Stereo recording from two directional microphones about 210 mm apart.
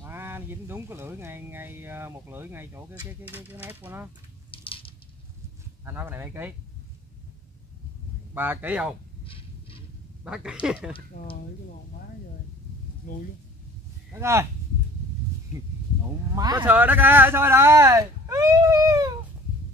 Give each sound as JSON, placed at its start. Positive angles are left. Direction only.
{"t": 0.0, "sound": "speech", "side_deg": -10}
{"t": 4.5, "sound": "a sound", "side_deg": 25}
{"t": 5.9, "sound": "speech", "side_deg": -10}
{"t": 8.4, "sound": "speech", "side_deg": -10}
{"t": 9.2, "sound": "a sound", "side_deg": 25}
{"t": 10.2, "sound": "speech", "side_deg": -5}
{"t": 11.1, "sound": "speech", "side_deg": 35}
{"t": 13.0, "sound": "speech", "side_deg": 40}
{"t": 14.1, "sound": "speech", "side_deg": -15}
{"t": 16.3, "sound": "speech", "side_deg": -20}
{"t": 16.6, "sound": "speech", "side_deg": -10}